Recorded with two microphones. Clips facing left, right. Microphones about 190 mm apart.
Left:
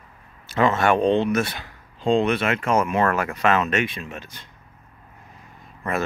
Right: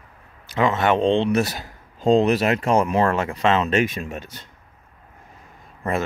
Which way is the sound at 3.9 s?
45° right (ahead or behind).